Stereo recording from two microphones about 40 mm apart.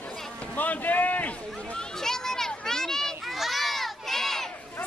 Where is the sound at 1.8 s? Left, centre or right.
Centre.